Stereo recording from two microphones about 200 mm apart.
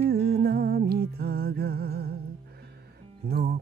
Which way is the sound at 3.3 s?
50° right (ahead or behind).